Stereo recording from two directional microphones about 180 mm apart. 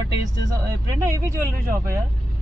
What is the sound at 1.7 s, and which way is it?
Speech, 15° right (ahead or behind).